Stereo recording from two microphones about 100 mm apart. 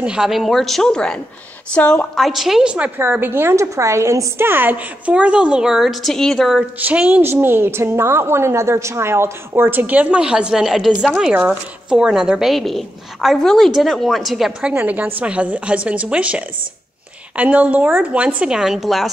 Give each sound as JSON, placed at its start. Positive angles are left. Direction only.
{"t": 0.0, "sound": "a woman's voice", "side_deg": -10}
{"t": 2.1, "sound": "a woman's voice", "side_deg": 0}
{"t": 3.0, "sound": "a woman's voice", "side_deg": -20}
{"t": 6.8, "sound": "a woman's voice", "side_deg": -15}
{"t": 14.7, "sound": "a woman's voice", "side_deg": -15}